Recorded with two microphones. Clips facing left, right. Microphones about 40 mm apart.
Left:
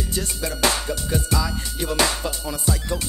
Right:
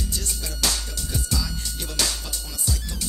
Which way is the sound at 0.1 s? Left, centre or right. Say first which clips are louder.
Left 6 dB; left.